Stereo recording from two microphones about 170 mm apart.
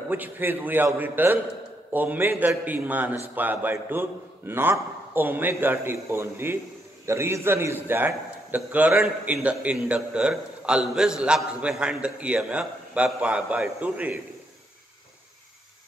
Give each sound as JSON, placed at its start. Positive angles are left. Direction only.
{"t": 0.1, "sound": "a man's voice", "side_deg": -10}